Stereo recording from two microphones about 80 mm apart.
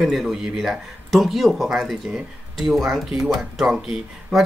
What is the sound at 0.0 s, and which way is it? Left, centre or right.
Speech, centre.